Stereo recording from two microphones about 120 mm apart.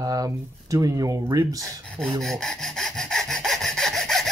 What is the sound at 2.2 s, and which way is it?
Sawing, 5° left (ahead or behind).